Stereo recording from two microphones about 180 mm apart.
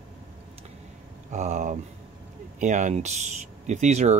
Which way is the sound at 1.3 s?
40° right (ahead or behind).